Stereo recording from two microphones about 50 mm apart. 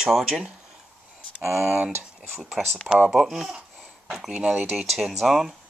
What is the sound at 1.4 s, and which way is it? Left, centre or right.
Speech, right.